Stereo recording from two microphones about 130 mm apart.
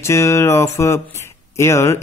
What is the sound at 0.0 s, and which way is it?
Speech, 20° left (ahead or behind).